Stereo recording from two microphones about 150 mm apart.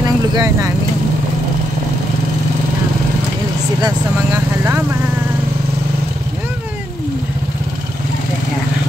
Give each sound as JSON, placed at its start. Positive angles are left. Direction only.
{"t": 0.0, "sound": "vehicle", "side_deg": -25}
{"t": 3.8, "sound": "speech", "side_deg": -20}